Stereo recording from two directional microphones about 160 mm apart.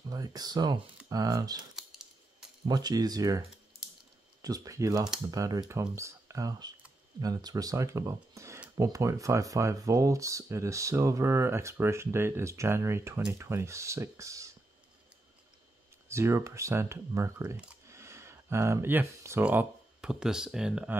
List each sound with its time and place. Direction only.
0.1 s speech: 25° right (ahead or behind)
1.8 s typewriter: 5° right (ahead or behind)
2.6 s speech: 25° right (ahead or behind)
16.1 s speech: 15° right (ahead or behind)